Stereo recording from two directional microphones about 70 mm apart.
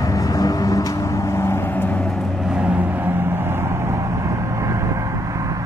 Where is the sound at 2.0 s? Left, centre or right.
Centre.